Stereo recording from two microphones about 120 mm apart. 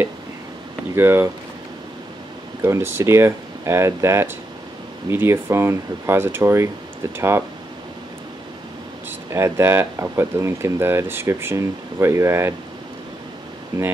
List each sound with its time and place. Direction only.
0.9 s speech: 20° right (ahead or behind)
2.6 s speech: 20° right (ahead or behind)
9.3 s speech: 20° right (ahead or behind)